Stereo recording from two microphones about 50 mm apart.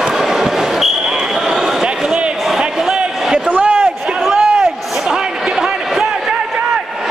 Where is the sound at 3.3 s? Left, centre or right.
Right.